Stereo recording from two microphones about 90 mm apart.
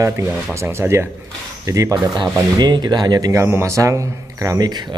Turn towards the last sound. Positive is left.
turn(degrees=-35)  # may be behind; listen again after turning